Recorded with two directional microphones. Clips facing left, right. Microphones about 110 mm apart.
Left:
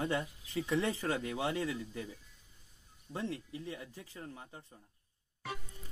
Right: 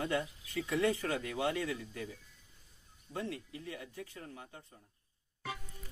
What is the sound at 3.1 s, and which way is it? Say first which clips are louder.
Speech: left 1 dB; 30° left (ahead or behind).